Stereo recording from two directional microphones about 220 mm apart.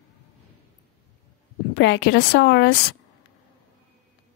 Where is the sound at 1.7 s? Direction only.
50° left (ahead or behind).